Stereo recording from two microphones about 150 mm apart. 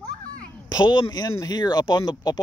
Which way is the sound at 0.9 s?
25° left (ahead or behind).